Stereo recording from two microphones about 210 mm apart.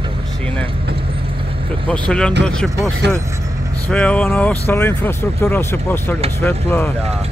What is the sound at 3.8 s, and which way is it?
Speech, 5° left (ahead or behind).